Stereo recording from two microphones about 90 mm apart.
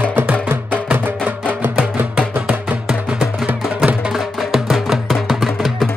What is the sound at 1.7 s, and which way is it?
Music, 15° right (ahead or behind).